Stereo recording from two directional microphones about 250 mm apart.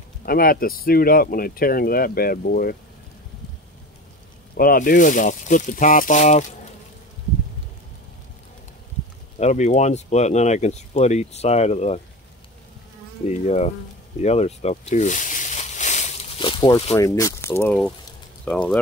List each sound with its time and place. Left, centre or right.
0.2 s speech: left
4.6 s speech: left
9.4 s speech: left
13.3 s speech: left; by 18.8 s centre